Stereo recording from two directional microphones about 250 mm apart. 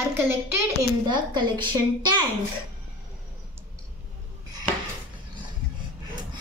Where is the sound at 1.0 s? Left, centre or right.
Centre.